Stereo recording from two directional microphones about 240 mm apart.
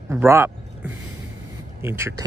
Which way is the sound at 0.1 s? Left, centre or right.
Centre.